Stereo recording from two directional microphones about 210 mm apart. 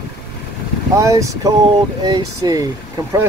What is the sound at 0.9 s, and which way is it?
Speech, 15° right (ahead or behind).